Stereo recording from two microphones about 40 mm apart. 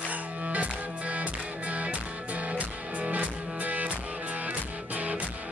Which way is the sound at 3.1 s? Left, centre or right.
Right.